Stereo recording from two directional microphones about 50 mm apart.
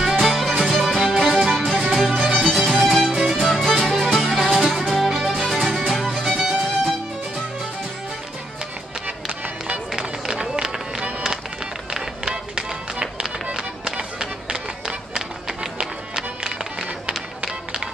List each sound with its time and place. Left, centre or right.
0.2 s music: centre
3.1 s music: centre
3.4 s music: centre
10.3 s run: centre
11.1 s music: right